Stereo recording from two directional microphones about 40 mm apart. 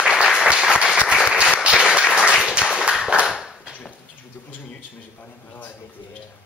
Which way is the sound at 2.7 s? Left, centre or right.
Centre.